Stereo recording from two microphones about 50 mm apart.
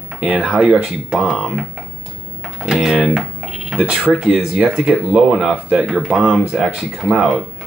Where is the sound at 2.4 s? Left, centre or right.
Centre.